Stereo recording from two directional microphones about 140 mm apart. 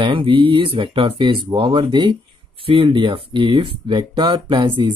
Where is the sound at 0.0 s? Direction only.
35° right (ahead or behind).